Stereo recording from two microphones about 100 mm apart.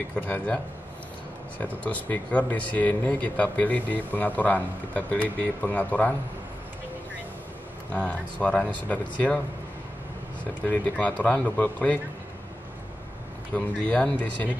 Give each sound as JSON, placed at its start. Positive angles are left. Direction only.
{"t": 0.1, "sound": "speech", "side_deg": 15}
{"t": 1.6, "sound": "speech", "side_deg": 15}
{"t": 7.9, "sound": "speech", "side_deg": 15}
{"t": 10.7, "sound": "speech", "side_deg": 15}
{"t": 13.6, "sound": "speech", "side_deg": 10}